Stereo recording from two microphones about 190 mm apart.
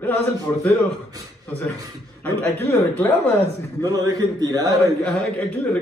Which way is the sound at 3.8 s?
20° right (ahead or behind).